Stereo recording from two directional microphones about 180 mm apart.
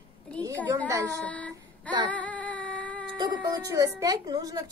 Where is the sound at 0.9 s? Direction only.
15° right (ahead or behind).